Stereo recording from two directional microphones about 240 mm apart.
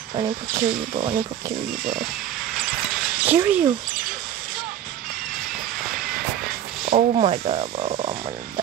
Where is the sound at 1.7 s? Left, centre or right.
Right.